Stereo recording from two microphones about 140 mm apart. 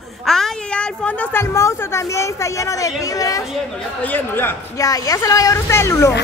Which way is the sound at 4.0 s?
15° left (ahead or behind).